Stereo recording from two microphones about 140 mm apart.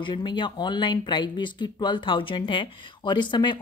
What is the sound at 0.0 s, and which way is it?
Speech, 30° left (ahead or behind).